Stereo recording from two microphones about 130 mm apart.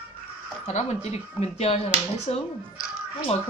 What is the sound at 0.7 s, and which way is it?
Speech, 55° left (ahead or behind).